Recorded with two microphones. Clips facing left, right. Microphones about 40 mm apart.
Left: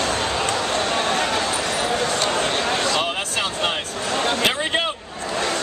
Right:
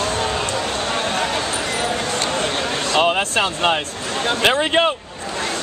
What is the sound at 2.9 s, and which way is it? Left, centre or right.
Speech, right.